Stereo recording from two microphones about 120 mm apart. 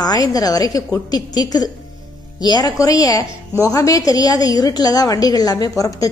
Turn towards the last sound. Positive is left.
turn(degrees=30)  # may be behind; listen again after turning